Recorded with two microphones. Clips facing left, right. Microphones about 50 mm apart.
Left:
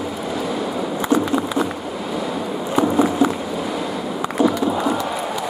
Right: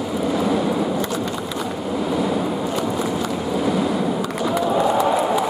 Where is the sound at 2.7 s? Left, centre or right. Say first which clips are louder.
Left 5 dB; left.